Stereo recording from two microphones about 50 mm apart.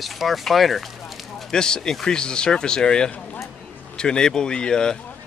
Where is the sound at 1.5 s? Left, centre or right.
Centre.